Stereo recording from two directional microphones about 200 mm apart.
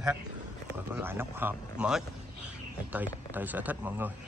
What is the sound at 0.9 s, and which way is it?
Speech, 10° right (ahead or behind).